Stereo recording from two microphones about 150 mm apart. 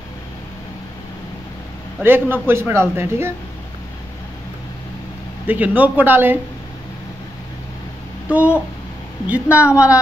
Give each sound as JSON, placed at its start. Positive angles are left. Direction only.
{"t": 2.0, "sound": "speech", "side_deg": -15}
{"t": 5.5, "sound": "speech", "side_deg": -10}
{"t": 8.3, "sound": "speech", "side_deg": -10}